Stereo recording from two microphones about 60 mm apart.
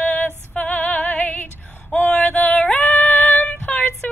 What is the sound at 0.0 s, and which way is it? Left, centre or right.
Female singing, left.